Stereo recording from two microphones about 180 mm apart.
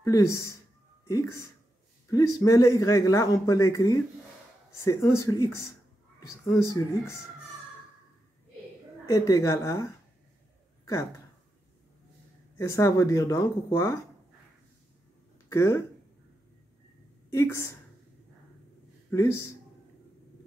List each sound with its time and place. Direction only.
0.0 s speech: 15° left (ahead or behind)
9.0 s speech: 20° left (ahead or behind)
12.5 s speech: 15° left (ahead or behind)
15.5 s speech: 15° left (ahead or behind)
17.3 s speech: 15° left (ahead or behind)
19.0 s speech: 15° left (ahead or behind)